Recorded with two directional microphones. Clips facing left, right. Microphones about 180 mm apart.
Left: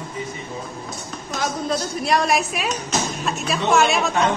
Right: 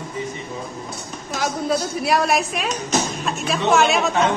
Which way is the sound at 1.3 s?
5° right (ahead or behind).